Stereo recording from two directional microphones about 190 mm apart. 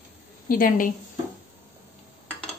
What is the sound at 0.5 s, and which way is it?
Speech, 50° left (ahead or behind).